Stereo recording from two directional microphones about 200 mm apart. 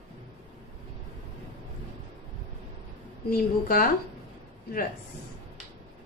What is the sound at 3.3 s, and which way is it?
Speech, 45° left (ahead or behind).